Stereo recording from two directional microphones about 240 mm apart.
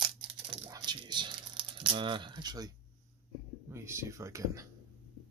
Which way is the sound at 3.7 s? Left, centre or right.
Centre.